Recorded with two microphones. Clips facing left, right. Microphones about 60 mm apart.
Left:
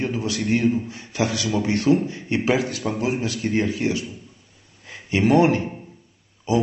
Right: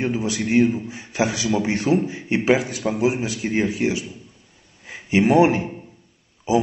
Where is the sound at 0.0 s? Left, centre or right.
Centre.